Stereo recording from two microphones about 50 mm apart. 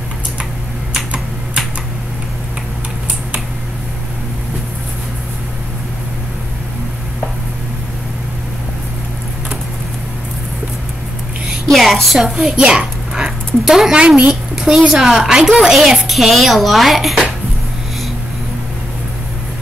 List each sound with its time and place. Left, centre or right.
11.7 s speech: centre
12.4 s a sound: centre
13.7 s a woman's voice: centre